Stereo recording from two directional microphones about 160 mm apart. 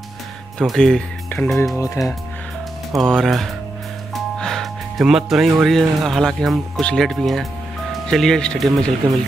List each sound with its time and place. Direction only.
0.6 s speech: 5° left (ahead or behind)
2.0 s speech: 20° left (ahead or behind)
3.0 s speech: centre (ahead or behind)